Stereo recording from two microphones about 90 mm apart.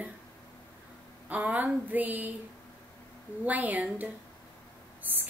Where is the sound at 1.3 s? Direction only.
20° right (ahead or behind).